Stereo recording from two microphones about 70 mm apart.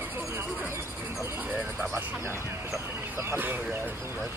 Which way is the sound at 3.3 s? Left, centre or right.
Right.